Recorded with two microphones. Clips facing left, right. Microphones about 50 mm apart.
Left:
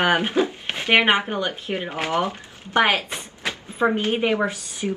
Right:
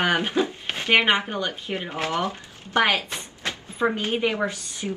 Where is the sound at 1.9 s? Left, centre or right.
Left.